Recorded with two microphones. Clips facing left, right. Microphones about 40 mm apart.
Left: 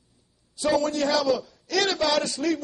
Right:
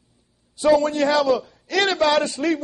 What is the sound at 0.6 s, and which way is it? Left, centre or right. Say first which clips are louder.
A man's voice: right 6 dB; right.